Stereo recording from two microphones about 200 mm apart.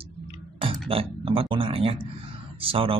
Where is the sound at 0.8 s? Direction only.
30° right (ahead or behind).